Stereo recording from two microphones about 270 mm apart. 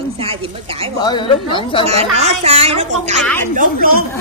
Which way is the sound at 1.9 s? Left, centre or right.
Right.